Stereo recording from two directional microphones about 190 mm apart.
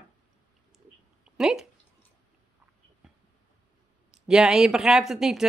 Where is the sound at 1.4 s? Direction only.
Centre (ahead or behind).